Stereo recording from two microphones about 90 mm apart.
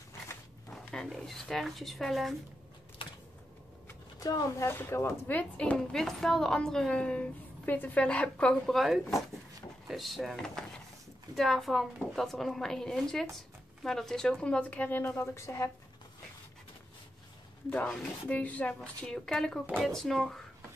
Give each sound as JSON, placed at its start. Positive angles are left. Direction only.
{"t": 0.7, "sound": "a sound", "side_deg": 5}
{"t": 1.0, "sound": "a woman's voice", "side_deg": 0}
{"t": 4.2, "sound": "speech", "side_deg": 40}
{"t": 5.4, "sound": "a woman's voice", "side_deg": 15}
{"t": 18.3, "sound": "a woman's voice", "side_deg": 15}